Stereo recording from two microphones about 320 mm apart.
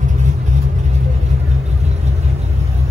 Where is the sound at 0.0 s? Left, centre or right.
Right.